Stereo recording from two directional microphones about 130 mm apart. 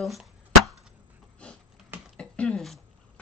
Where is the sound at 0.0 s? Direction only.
Centre (ahead or behind).